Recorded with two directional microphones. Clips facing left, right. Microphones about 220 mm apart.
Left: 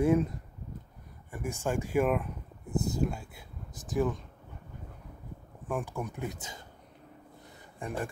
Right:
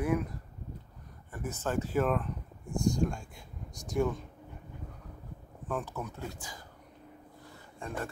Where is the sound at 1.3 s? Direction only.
10° left (ahead or behind).